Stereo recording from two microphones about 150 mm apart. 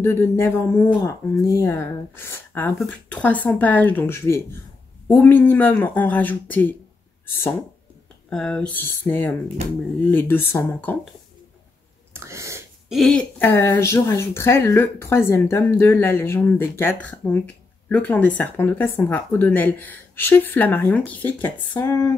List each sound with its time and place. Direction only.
0.0 s speech: 15° left (ahead or behind)
8.3 s speech: 5° left (ahead or behind)
9.6 s speech: 45° right (ahead or behind)
10.1 s speech: 15° left (ahead or behind)
12.1 s a sound: 20° right (ahead or behind)
12.9 s speech: 5° left (ahead or behind)